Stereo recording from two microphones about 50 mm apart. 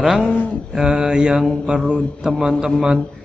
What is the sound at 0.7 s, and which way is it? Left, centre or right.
A man's voice, centre.